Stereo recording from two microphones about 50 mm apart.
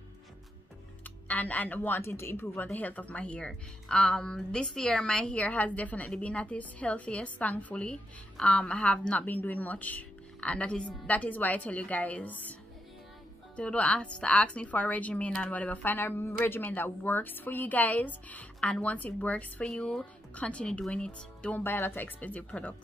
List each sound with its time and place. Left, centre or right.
1.0 s speech: left
2.0 s speech: left
2.7 s a woman's voice: left
7.7 s a woman's voice: centre
9.2 s a woman's voice: left; by 11.0 s centre
11.1 s a woman's voice: left
13.6 s a woman's voice: left
19.6 s a woman's voice: centre
20.3 s a woman's voice: left
21.5 s speech: left
22.5 s a woman's voice: left